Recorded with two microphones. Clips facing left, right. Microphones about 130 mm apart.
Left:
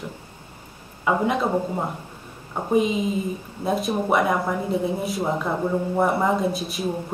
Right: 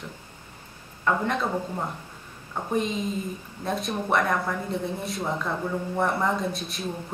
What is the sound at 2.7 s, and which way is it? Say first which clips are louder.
A woman's voice: left 6 dB; 5° left (ahead or behind).